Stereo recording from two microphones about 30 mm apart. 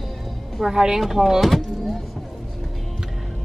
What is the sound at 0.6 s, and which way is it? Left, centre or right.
Speech, centre.